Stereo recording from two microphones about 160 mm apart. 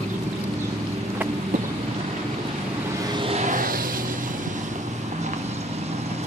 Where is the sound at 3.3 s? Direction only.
45° right (ahead or behind).